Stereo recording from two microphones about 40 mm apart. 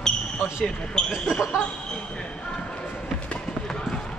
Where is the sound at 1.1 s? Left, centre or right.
Centre.